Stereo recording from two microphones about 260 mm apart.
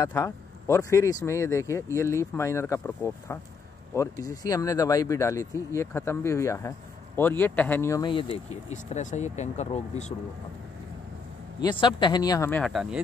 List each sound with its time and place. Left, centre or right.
0.0 s speech: centre
11.6 s speech: centre